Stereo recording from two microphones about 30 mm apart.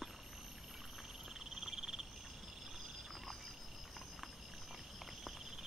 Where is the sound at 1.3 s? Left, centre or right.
Centre.